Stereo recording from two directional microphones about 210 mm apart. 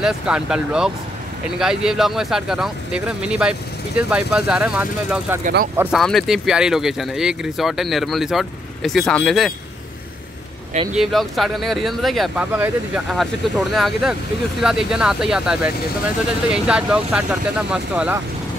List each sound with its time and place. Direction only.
0.0 s speech: 5° right (ahead or behind)
10.7 s speech: 35° right (ahead or behind)
11.0 s speech: centre (ahead or behind)